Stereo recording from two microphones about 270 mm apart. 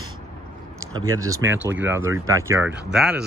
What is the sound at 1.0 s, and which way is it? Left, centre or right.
Speech, right.